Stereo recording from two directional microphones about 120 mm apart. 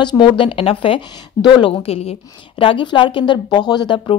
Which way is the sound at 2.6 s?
45° left (ahead or behind).